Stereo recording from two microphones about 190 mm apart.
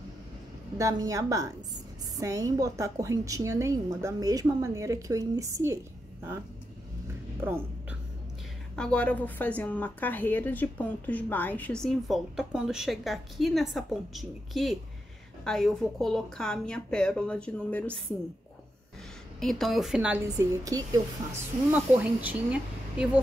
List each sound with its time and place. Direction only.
0.7 s a woman's voice: 15° right (ahead or behind)
8.7 s a woman's voice: 5° left (ahead or behind)
19.4 s a woman's voice: centre (ahead or behind)
20.6 s speech: 20° right (ahead or behind)
21.7 s a woman's voice: 10° right (ahead or behind)